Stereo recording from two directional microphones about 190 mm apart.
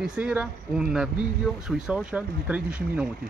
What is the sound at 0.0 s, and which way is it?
Speech, 5° right (ahead or behind).